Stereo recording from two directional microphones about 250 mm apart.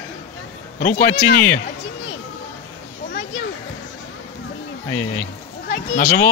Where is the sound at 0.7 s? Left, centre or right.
Left.